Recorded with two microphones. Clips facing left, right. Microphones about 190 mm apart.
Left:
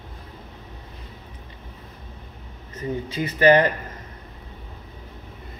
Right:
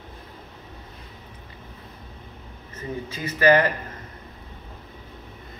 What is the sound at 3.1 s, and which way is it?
Speech, 25° left (ahead or behind).